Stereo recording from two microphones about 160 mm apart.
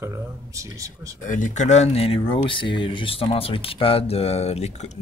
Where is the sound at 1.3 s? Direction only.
55° left (ahead or behind).